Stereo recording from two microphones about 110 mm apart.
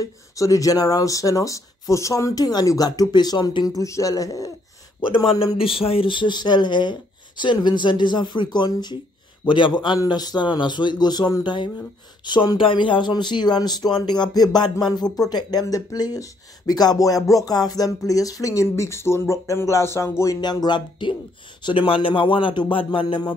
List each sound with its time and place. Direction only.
0.0 s speech: 30° left (ahead or behind)
5.6 s speech: 55° left (ahead or behind); by 20.3 s 25° left (ahead or behind)
20.3 s speech: 40° left (ahead or behind)